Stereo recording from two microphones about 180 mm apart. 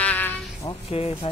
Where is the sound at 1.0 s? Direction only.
30° left (ahead or behind).